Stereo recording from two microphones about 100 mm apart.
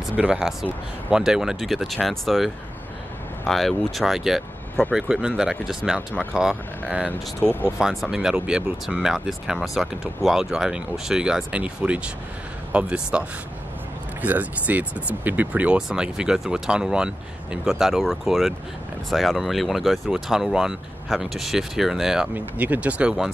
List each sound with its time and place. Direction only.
0.1 s speech: 10° right (ahead or behind)
7.1 s speech: 20° left (ahead or behind)
7.8 s speech: centre (ahead or behind)
14.2 s speech: 15° right (ahead or behind)
22.3 s speech: 15° right (ahead or behind)